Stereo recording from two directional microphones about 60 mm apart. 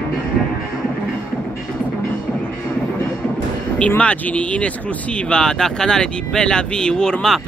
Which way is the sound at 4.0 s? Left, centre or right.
Left.